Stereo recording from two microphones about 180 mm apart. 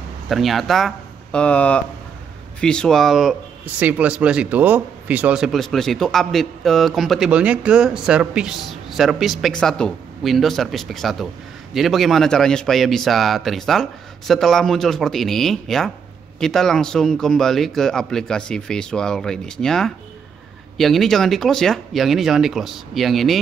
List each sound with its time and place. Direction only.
0.3 s speech: centre (ahead or behind)